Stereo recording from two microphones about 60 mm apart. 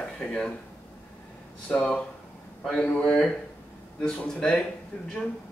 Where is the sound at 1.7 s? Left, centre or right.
Centre.